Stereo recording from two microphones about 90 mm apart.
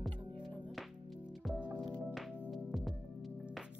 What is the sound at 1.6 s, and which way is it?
Music, 50° right (ahead or behind).